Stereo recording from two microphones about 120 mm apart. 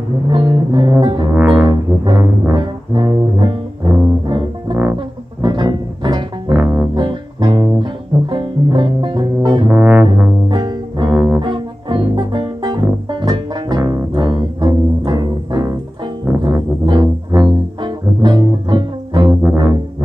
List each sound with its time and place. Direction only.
0.3 s music: 40° right (ahead or behind)
1.3 s music: 10° right (ahead or behind)
1.7 s brass instrument: 35° right (ahead or behind)
2.5 s music: 40° right (ahead or behind)
6.5 s music: 10° right (ahead or behind)
7.0 s music: 40° right (ahead or behind)
9.7 s music: 15° right (ahead or behind)
10.5 s music: 35° right (ahead or behind)
11.1 s music: 5° right (ahead or behind)
11.3 s music: 40° right (ahead or behind)